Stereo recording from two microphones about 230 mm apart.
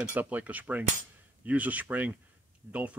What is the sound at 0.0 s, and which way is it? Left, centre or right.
Cutlery, centre.